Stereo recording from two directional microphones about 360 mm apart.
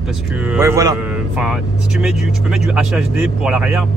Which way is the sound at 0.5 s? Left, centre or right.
Centre.